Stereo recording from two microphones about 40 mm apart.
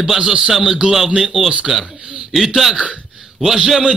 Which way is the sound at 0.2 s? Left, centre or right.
Centre.